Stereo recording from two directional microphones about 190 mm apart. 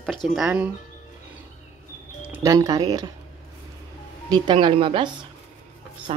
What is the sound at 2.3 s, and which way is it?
Speech, 20° right (ahead or behind).